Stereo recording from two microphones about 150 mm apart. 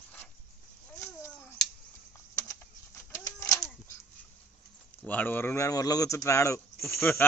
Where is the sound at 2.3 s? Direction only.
20° left (ahead or behind).